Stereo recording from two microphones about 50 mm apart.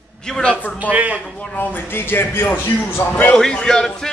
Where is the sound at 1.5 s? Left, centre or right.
Left.